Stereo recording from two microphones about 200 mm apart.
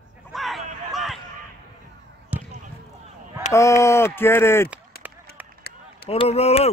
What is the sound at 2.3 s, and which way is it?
Basketball bounce, 10° right (ahead or behind).